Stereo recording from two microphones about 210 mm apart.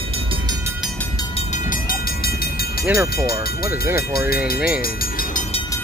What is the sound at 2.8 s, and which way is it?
Speech, 15° right (ahead or behind).